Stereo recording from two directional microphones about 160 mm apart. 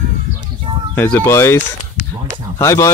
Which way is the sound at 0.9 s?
15° left (ahead or behind).